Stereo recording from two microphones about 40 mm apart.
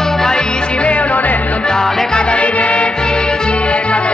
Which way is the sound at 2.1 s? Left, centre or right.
Left.